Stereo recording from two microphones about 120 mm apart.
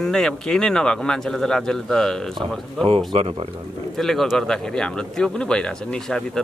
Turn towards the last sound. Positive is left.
turn(degrees=5)  # may be behind; listen again after turning